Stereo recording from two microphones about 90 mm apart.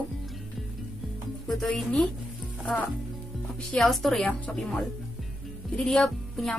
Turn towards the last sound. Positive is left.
turn(degrees=5)  # may be behind; listen again after turning